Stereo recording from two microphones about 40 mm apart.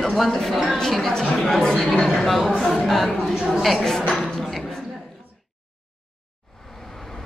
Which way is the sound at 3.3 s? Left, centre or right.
Centre.